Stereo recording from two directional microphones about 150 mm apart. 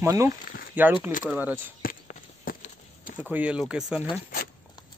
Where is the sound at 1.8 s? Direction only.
70° left (ahead or behind).